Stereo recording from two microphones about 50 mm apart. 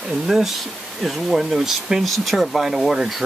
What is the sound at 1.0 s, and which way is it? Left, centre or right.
Speech, centre.